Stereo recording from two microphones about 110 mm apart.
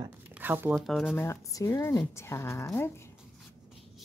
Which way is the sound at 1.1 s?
25° left (ahead or behind).